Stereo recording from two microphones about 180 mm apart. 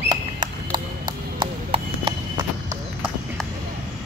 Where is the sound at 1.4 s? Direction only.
30° right (ahead or behind).